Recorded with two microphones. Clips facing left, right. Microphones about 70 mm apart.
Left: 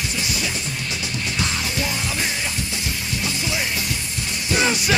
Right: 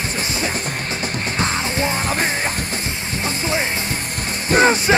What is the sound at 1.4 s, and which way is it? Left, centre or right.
Music, right.